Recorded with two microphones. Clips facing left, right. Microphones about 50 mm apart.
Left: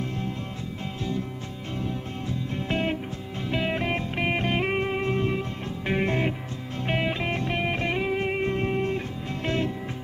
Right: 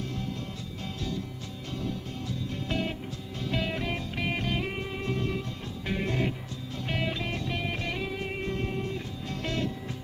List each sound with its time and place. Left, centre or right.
2.5 s music: left